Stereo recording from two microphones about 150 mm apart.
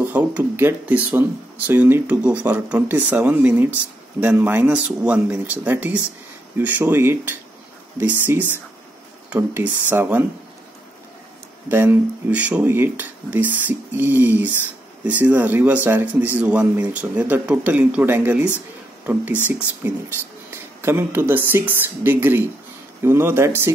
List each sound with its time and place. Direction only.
0.0 s a man's voice: 10° right (ahead or behind)
11.7 s a man's voice: 15° right (ahead or behind)